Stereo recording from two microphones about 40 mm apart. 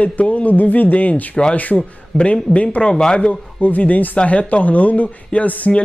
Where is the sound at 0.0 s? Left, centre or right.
Left.